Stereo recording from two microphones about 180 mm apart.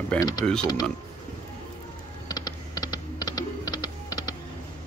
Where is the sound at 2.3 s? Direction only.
20° left (ahead or behind).